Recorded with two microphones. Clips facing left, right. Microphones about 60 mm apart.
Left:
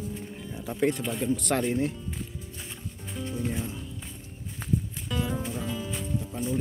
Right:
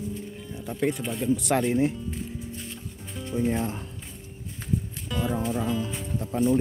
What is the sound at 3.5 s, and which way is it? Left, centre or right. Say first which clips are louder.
Speech: right 6 dB; right.